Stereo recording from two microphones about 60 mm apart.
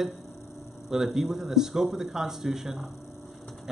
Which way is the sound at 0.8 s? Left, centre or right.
Centre.